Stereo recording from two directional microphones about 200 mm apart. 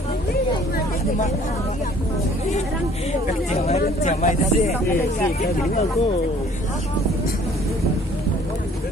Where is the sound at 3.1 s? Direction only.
35° left (ahead or behind).